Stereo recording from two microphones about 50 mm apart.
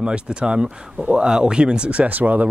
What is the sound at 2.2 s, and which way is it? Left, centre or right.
Speech, right.